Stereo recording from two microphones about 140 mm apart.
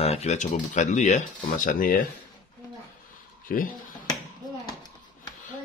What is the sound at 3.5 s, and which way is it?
Speech, 90° left.